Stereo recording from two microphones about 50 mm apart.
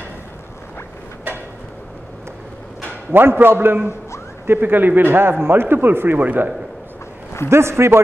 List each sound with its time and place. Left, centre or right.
3.1 s speech: right
7.4 s a man's voice: right